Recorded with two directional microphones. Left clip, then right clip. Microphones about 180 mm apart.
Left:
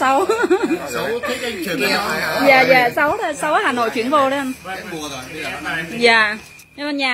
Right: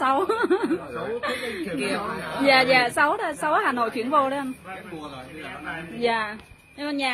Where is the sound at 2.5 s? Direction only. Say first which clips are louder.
Left 5 dB; 25° right (ahead or behind).